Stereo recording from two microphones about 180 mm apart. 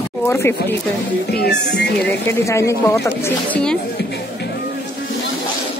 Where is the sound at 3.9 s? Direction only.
65° left (ahead or behind).